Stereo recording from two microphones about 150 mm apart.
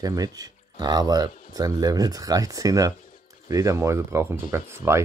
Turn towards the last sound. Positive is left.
turn(degrees=-20)  # may be behind; listen again after turning